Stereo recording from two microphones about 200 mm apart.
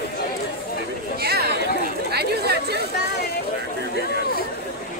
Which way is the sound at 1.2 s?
50° right (ahead or behind).